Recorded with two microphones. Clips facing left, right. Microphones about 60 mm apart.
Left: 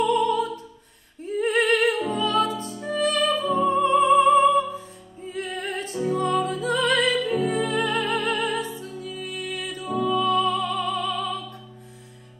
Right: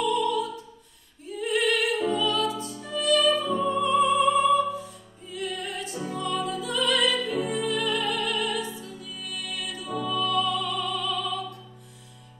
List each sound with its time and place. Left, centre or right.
0.0 s opera: left
1.2 s music: left